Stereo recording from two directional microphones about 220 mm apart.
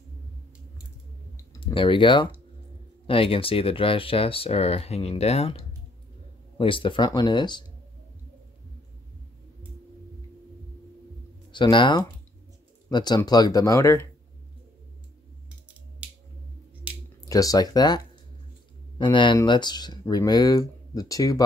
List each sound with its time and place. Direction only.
1.3 s computer keyboard: 20° left (ahead or behind)
3.1 s speech: 25° left (ahead or behind)
11.5 s speech: 20° left (ahead or behind)
17.3 s speech: 15° left (ahead or behind)